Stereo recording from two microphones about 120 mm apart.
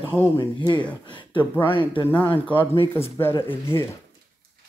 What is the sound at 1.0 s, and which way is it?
Speech, 40° left (ahead or behind).